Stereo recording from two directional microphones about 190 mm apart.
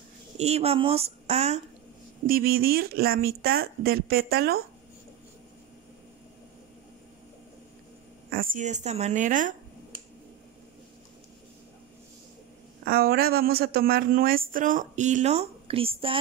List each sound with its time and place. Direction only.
0.4 s speech: 35° right (ahead or behind)
2.2 s speech: 50° right (ahead or behind)
8.3 s speech: 50° right (ahead or behind)
12.8 s speech: 50° right (ahead or behind); by 16.2 s 30° right (ahead or behind)